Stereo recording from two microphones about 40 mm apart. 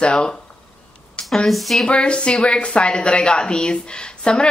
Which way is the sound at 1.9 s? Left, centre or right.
Left.